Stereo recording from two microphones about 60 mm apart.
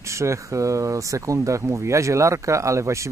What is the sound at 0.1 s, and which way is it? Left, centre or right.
Speech, right.